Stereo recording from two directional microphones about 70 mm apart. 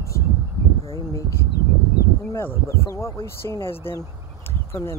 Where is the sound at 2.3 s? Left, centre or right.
Left.